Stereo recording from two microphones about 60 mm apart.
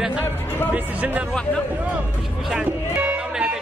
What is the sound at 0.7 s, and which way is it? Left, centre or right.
Speech, right.